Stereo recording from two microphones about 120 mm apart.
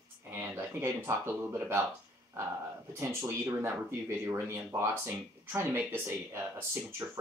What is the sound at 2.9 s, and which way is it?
Speech, 20° right (ahead or behind).